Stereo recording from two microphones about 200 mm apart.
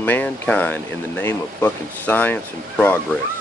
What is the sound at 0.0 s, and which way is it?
Speech, 10° left (ahead or behind).